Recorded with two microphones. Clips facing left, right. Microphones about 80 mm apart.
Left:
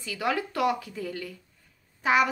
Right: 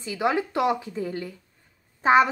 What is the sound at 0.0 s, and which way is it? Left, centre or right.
A woman's voice, right.